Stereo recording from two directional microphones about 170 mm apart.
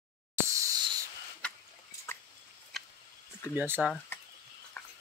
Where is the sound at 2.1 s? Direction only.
15° left (ahead or behind).